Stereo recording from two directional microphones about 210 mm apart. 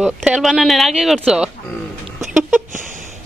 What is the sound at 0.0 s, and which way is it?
A man's voice, 5° right (ahead or behind).